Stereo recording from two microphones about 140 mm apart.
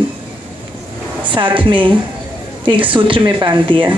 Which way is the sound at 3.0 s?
35° right (ahead or behind).